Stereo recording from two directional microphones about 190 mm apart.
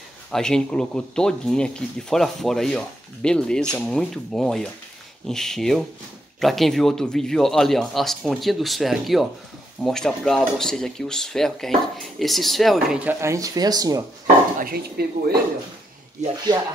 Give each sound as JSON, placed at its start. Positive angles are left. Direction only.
{"t": 0.3, "sound": "speech", "side_deg": 5}
{"t": 13.2, "sound": "speech", "side_deg": -15}
{"t": 14.6, "sound": "speech", "side_deg": -55}